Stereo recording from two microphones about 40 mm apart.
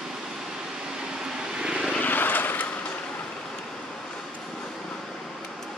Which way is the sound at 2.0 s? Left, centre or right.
Left.